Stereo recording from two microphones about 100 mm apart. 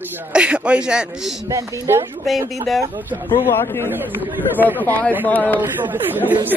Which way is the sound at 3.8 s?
20° right (ahead or behind).